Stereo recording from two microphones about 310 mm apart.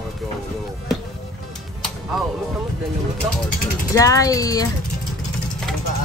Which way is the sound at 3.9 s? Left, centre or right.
Centre.